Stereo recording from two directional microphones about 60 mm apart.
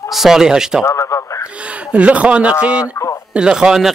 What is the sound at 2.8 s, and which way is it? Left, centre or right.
Speech, left.